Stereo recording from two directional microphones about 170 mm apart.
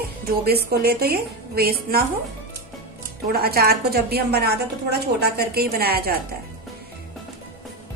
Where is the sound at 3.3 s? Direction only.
65° right (ahead or behind).